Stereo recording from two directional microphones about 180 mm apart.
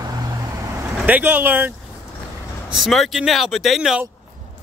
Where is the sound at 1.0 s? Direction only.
5° right (ahead or behind).